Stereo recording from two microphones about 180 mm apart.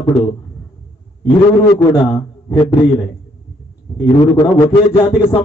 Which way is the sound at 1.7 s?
25° left (ahead or behind).